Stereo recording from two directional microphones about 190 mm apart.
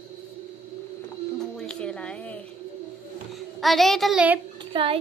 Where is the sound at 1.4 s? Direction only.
5° left (ahead or behind).